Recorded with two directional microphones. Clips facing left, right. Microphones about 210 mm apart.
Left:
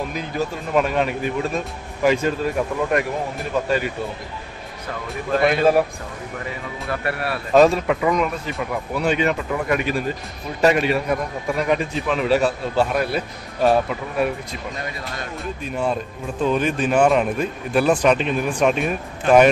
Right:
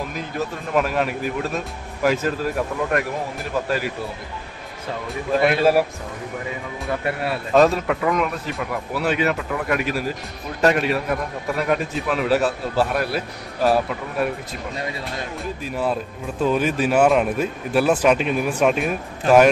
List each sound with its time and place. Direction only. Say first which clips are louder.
0.1 s a man's voice: left 2 dB; centre (ahead or behind)
5.4 s a man's voice: left 1 dB; 5° right (ahead or behind)
6.9 s speech: right 1 dB; 20° right (ahead or behind)
7.5 s a man's voice: left 2 dB; centre (ahead or behind)
15.6 s a man's voice: left 1 dB; 5° right (ahead or behind)